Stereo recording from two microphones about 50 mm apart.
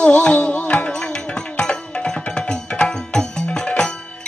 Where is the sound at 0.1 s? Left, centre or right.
Left.